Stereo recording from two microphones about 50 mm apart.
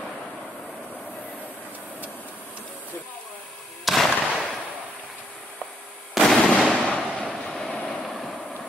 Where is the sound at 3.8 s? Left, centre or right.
Centre.